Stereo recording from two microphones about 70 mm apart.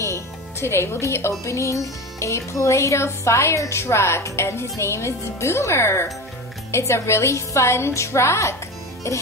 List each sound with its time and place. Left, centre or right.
0.0 s music: left
1.4 s speech: left
9.0 s music: left